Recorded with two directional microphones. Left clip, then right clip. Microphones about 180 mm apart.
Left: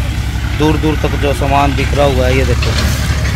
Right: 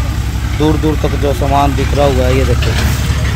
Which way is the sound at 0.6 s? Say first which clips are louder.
Even; centre (ahead or behind).